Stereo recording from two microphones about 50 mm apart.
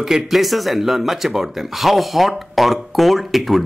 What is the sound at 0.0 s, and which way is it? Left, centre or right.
Speech, centre.